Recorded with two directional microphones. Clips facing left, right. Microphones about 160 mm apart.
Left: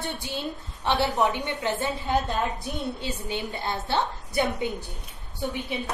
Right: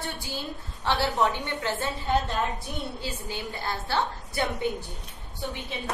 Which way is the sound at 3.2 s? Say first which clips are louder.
Left 4 dB; 20° left (ahead or behind).